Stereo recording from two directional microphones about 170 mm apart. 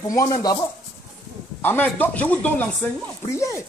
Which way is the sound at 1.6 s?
10° left (ahead or behind).